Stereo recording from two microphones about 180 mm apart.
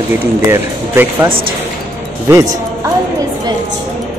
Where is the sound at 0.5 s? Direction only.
15° right (ahead or behind).